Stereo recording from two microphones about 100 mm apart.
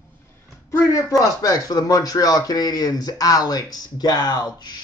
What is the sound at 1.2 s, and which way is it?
Speech, 40° left (ahead or behind).